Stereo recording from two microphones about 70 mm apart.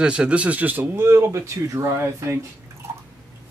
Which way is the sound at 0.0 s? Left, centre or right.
Centre.